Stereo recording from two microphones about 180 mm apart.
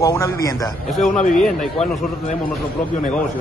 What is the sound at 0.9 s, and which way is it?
Speech, centre (ahead or behind).